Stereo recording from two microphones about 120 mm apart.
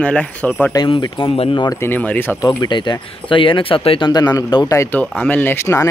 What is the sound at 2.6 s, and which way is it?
Speech, 40° left (ahead or behind).